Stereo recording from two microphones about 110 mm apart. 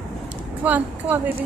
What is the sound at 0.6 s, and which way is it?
Speech, 15° right (ahead or behind).